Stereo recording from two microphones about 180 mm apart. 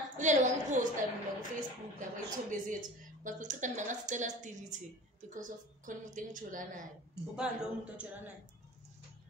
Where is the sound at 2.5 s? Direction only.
45° right (ahead or behind).